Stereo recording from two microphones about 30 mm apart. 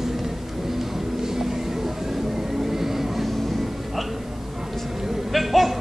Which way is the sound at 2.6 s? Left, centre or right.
Centre.